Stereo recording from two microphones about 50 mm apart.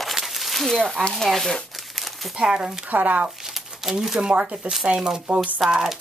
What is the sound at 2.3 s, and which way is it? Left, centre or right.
Speech, centre.